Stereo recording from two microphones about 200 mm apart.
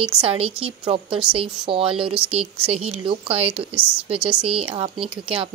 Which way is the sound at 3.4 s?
5° right (ahead or behind).